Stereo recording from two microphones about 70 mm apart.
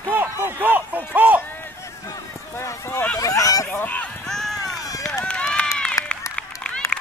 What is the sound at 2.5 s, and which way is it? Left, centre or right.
Speech, left.